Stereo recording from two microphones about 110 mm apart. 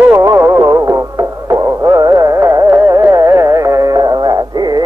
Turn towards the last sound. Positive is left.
turn(degrees=-40)  # may be behind; listen again after turning